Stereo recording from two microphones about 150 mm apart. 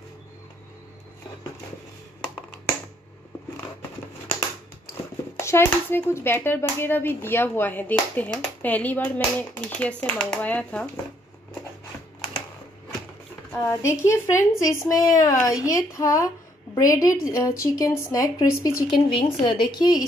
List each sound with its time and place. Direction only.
5.4 s speech: 20° left (ahead or behind)
13.5 s speech: 20° left (ahead or behind)
18.9 s a woman's voice: 35° left (ahead or behind)